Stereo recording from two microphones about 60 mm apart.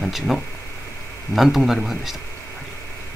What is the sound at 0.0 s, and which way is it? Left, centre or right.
Speech, centre.